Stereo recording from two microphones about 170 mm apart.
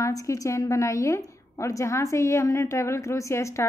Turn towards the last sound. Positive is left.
turn(degrees=15)  # may be behind; listen again after turning